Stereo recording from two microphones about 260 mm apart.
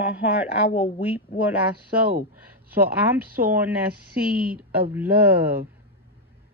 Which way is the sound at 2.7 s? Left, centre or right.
Centre.